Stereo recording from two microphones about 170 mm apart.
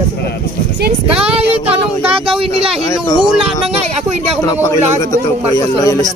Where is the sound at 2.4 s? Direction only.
35° right (ahead or behind).